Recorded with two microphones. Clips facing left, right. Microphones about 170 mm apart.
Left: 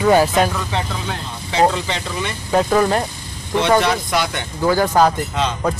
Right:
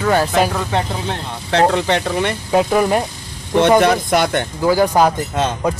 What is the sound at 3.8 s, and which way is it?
Speech, 50° right (ahead or behind).